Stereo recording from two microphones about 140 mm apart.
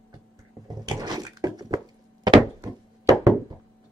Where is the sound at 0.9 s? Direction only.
30° right (ahead or behind).